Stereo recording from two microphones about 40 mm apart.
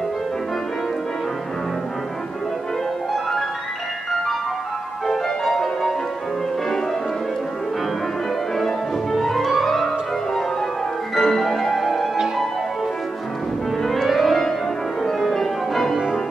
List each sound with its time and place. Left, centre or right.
5.0 s music: centre
8.5 s music: centre
13.8 s music: centre